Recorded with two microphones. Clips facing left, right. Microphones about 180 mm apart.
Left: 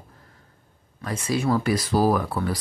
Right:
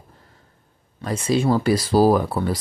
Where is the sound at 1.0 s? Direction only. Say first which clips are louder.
Right 4 dB; 25° right (ahead or behind).